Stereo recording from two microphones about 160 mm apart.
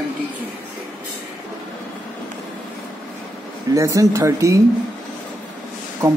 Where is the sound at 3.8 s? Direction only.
20° right (ahead or behind).